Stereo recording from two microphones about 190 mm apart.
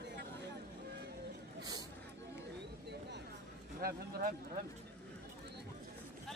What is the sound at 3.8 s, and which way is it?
Speech, 50° right (ahead or behind).